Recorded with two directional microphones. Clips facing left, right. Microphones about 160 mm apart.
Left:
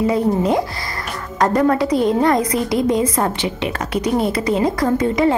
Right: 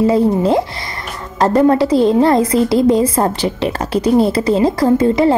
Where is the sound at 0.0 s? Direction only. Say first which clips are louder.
Right 4 dB; 30° right (ahead or behind).